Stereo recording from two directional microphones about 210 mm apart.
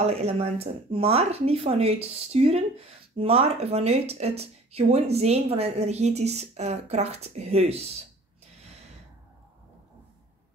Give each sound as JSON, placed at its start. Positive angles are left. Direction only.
{"t": 0.0, "sound": "speech", "side_deg": -30}